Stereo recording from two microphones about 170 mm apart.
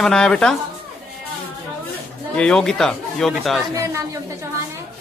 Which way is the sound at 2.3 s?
5° left (ahead or behind).